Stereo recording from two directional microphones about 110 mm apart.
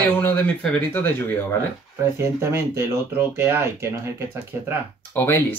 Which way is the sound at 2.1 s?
25° right (ahead or behind).